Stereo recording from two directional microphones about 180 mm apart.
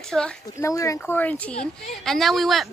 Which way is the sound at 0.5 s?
15° left (ahead or behind).